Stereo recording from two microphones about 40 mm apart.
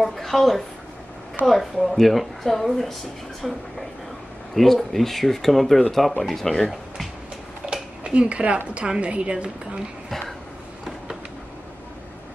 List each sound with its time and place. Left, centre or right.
0.0 s speech: centre
7.6 s a sound: right
8.7 s a woman's voice: right